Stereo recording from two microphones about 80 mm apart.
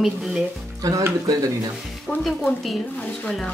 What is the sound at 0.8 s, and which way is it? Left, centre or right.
Speech, right.